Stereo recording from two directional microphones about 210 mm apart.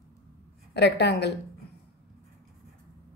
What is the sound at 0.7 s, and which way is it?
Speech, 55° left (ahead or behind).